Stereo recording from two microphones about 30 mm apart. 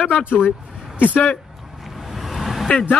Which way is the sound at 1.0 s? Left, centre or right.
Left.